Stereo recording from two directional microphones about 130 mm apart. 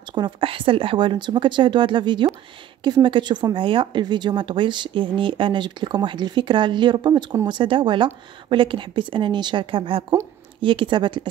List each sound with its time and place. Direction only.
0.1 s a woman's voice: 40° right (ahead or behind)